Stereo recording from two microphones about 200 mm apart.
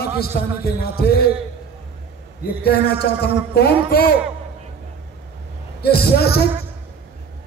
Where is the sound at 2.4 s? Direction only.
50° left (ahead or behind).